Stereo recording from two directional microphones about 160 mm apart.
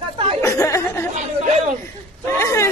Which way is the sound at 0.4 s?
20° left (ahead or behind).